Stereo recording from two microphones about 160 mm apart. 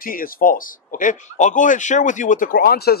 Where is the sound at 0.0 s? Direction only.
60° left (ahead or behind).